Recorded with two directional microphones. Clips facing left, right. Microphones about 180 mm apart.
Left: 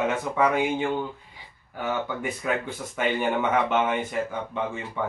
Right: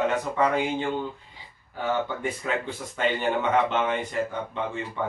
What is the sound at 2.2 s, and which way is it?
Speech, 5° left (ahead or behind).